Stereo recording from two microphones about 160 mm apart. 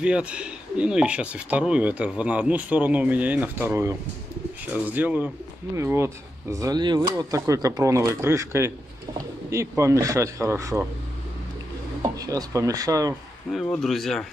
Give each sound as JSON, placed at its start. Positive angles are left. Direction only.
{"t": 0.0, "sound": "speech", "side_deg": -5}
{"t": 12.0, "sound": "speech", "side_deg": -20}
{"t": 13.5, "sound": "a man's voice", "side_deg": 0}